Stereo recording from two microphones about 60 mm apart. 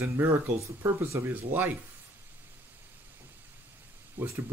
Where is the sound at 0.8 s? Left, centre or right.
Right.